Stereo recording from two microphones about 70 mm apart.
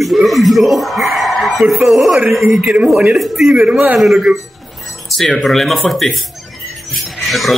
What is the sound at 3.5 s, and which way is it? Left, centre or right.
Speech, centre.